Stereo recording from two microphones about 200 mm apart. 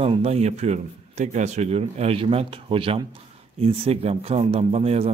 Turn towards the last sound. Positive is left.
turn(degrees=-30)  # may be behind; listen again after turning